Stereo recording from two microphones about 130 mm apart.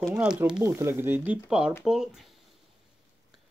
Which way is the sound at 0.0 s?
20° right (ahead or behind).